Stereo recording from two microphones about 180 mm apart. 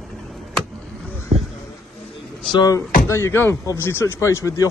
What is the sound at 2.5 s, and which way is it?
Speech, 20° left (ahead or behind).